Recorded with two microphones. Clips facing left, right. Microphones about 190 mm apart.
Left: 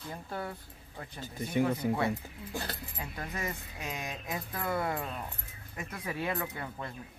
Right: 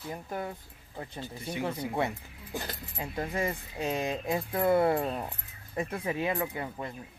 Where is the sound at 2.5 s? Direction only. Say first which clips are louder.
Right 2 dB; 20° right (ahead or behind).